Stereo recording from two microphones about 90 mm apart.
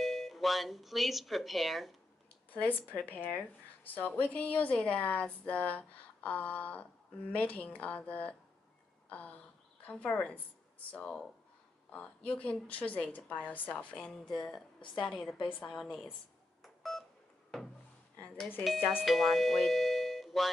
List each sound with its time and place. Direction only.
0.0 s speech: centre (ahead or behind)
2.5 s speech: 20° left (ahead or behind)
16.6 s telephone dialing: centre (ahead or behind)
18.6 s speech: 5° right (ahead or behind)